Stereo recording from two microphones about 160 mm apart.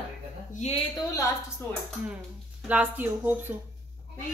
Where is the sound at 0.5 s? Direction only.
40° left (ahead or behind).